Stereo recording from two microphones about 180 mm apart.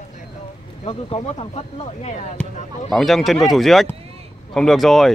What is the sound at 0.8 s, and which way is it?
Speech, 30° left (ahead or behind).